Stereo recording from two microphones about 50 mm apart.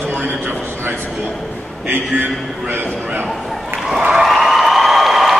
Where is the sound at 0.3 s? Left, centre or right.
Right.